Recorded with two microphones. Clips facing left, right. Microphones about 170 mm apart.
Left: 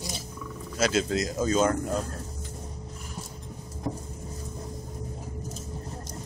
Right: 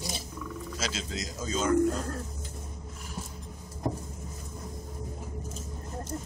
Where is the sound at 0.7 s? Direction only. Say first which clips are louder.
Left 12 dB; 55° left (ahead or behind).